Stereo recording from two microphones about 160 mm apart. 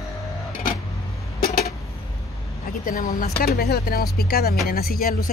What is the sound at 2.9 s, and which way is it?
Speech, 55° left (ahead or behind).